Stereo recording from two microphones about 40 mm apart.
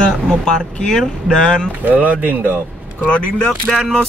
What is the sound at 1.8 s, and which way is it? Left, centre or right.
Speech, right.